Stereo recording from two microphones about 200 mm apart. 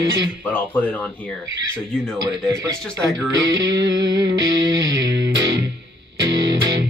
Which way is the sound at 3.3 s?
60° right (ahead or behind).